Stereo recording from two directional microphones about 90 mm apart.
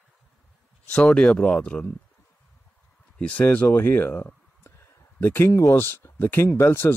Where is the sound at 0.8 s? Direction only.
10° left (ahead or behind).